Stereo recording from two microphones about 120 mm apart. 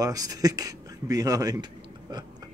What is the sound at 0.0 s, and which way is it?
Speech, 30° right (ahead or behind).